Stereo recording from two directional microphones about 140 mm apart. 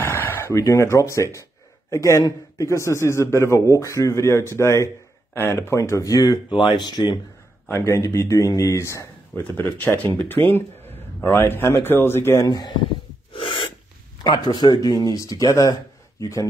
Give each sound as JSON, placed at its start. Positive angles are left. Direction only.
{"t": 0.1, "sound": "a man's voice", "side_deg": 15}
{"t": 7.6, "sound": "a man's voice", "side_deg": 20}
{"t": 13.3, "sound": "gasp", "side_deg": 40}
{"t": 14.2, "sound": "a man's voice", "side_deg": 30}